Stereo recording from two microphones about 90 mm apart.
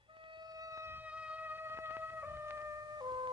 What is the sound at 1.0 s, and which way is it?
Music, 15° right (ahead or behind).